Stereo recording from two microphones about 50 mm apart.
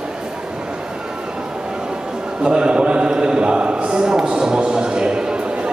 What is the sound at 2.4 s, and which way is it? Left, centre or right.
A man's voice, centre.